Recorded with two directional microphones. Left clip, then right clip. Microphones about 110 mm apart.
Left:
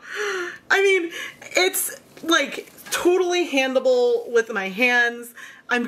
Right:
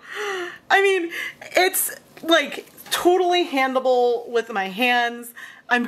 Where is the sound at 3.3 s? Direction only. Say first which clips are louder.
Right 1 dB; 20° right (ahead or behind).